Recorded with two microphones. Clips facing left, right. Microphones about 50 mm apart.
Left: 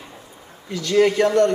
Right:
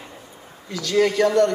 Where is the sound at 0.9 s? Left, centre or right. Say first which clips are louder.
Left 2 dB; centre.